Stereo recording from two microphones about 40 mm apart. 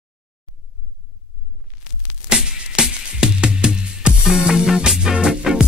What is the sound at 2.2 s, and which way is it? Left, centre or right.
Music, right.